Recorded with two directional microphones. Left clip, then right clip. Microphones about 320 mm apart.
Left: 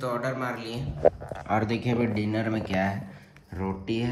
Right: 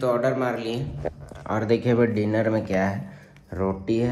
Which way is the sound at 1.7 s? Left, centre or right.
Centre.